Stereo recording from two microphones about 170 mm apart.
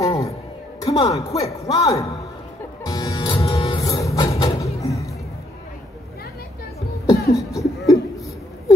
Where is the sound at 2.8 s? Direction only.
20° left (ahead or behind).